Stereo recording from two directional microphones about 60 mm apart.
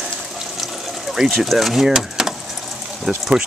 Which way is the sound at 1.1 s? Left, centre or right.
Centre.